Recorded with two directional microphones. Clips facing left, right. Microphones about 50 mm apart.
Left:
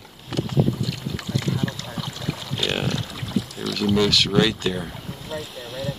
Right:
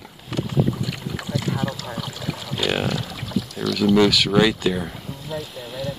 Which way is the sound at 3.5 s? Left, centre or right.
Centre.